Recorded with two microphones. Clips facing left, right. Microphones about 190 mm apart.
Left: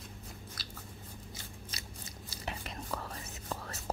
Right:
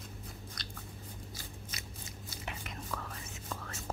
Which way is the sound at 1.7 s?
35° left (ahead or behind).